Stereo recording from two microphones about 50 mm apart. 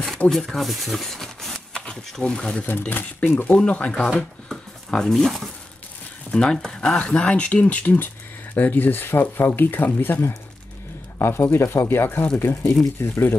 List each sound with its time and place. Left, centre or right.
0.3 s speech: centre
1.7 s speech: centre
2.6 s speech: left
3.4 s speech: left
7.0 s speech: left
11.1 s speech: left